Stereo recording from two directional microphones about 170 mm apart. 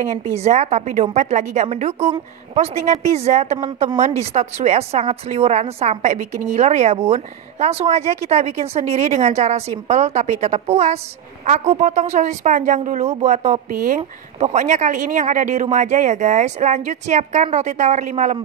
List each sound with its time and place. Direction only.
0.0 s speech: 40° right (ahead or behind)